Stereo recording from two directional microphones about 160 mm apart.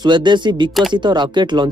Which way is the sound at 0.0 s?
30° right (ahead or behind).